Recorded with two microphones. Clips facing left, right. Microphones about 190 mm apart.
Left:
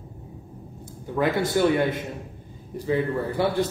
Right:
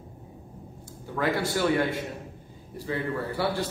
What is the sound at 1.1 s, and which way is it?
A man's voice, 20° left (ahead or behind).